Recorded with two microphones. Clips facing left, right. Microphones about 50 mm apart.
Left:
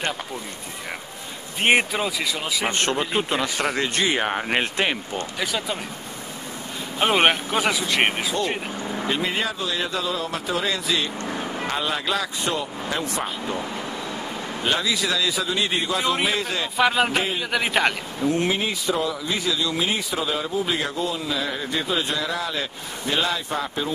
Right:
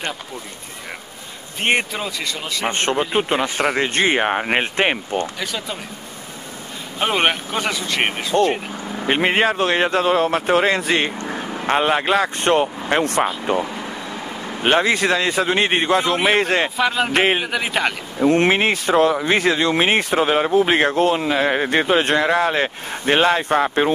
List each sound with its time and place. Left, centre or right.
1.6 s speech: centre
2.7 s a man's voice: right
5.4 s speech: centre
7.0 s speech: centre
8.5 s vehicle: centre
9.0 s speech: right
11.1 s vehicle: centre
11.6 s speech: right
14.6 s speech: right
16.7 s speech: centre
17.1 s speech: right
17.5 s speech: centre
18.2 s speech: right